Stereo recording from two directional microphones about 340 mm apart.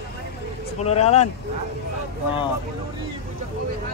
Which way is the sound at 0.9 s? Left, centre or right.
Centre.